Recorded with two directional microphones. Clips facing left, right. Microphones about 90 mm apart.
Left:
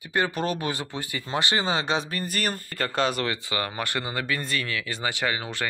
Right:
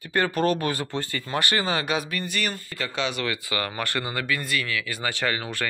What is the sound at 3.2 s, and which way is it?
Speech, 25° left (ahead or behind).